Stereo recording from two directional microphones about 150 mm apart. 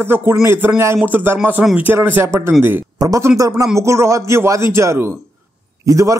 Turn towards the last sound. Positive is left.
turn(degrees=-20)  # may be behind; listen again after turning